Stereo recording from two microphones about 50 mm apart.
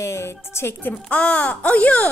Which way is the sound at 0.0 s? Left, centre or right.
Left.